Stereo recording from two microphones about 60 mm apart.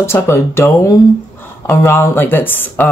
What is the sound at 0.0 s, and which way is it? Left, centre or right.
Speech, left.